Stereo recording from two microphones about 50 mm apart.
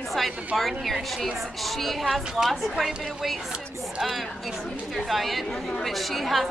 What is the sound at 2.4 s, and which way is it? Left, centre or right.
Speech, centre.